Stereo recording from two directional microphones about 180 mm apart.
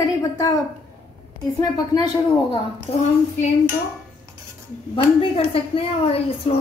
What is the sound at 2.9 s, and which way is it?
Speech, 35° left (ahead or behind).